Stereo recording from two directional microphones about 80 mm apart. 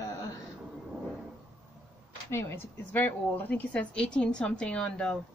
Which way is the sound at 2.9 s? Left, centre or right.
Left.